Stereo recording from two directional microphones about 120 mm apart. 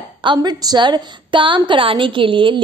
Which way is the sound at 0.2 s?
40° right (ahead or behind).